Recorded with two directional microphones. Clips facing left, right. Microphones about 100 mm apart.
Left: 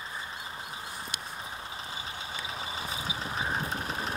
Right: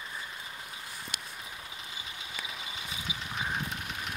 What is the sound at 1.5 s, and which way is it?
Vehicle, 35° left (ahead or behind).